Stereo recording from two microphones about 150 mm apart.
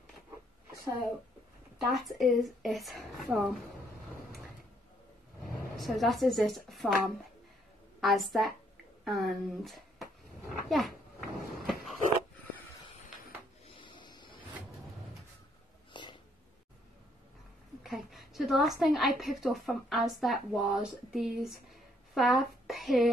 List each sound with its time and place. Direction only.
1.8 s a woman's voice: centre (ahead or behind)
5.4 s vehicle: 70° left (ahead or behind)
5.8 s a woman's voice: centre (ahead or behind)
8.0 s a woman's voice: centre (ahead or behind)
10.7 s babbling: centre (ahead or behind)
13.7 s printer: 35° left (ahead or behind)
15.9 s a sound: 30° left (ahead or behind)
17.8 s a woman's voice: centre (ahead or behind)